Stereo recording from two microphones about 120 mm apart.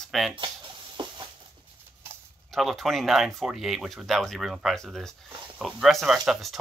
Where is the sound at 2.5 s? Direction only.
Centre (ahead or behind).